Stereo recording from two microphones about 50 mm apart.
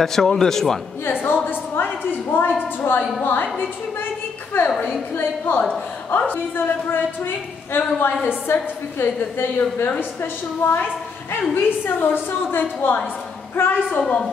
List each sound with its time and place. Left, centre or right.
0.0 s a man's voice: centre
1.2 s a woman's voice: left
8.5 s a woman's voice: left
13.9 s a woman's voice: left